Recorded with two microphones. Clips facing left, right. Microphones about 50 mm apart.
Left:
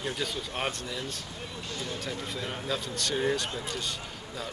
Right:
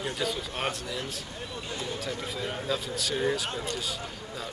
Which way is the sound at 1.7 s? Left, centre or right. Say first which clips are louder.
Right 1 dB; centre.